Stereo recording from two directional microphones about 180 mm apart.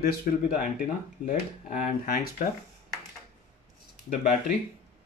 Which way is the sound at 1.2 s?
50° left (ahead or behind).